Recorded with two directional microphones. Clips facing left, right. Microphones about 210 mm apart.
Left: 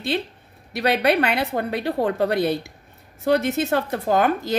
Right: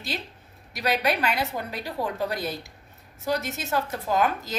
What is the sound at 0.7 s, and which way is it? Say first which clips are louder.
A woman's voice: left 6 dB; 60° left (ahead or behind).